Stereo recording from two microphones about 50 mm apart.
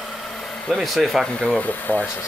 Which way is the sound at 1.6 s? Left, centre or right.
Left.